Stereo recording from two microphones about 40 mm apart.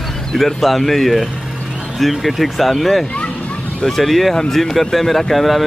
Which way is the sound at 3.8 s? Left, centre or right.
Centre.